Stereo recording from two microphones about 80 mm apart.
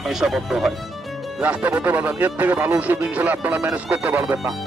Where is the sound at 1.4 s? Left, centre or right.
Right.